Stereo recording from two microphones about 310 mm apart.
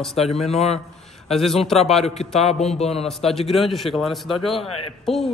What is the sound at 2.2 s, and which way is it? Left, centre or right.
Speech, centre.